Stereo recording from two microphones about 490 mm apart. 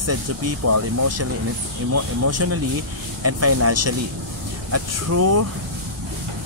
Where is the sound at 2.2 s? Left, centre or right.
Right.